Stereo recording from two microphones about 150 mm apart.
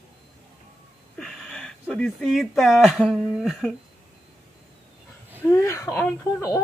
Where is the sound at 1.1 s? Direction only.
Centre (ahead or behind).